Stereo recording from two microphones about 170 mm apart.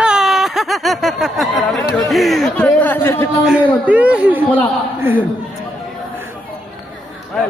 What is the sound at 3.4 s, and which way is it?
Speech, 5° right (ahead or behind).